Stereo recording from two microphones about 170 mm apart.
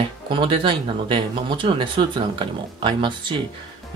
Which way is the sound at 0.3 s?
30° right (ahead or behind).